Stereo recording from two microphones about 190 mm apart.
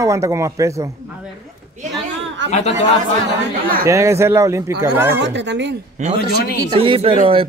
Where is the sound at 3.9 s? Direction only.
15° right (ahead or behind).